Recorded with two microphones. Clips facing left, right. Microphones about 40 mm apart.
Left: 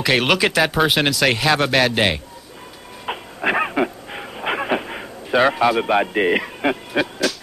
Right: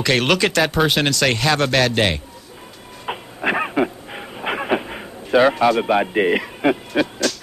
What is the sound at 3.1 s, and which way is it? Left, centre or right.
Dog, centre.